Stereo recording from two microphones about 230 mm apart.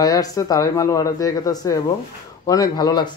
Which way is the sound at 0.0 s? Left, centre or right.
Centre.